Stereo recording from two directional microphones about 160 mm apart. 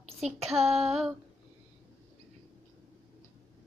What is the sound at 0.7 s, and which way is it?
Female singing, 5° right (ahead or behind).